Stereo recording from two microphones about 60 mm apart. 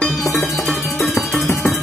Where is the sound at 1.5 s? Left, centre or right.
Left.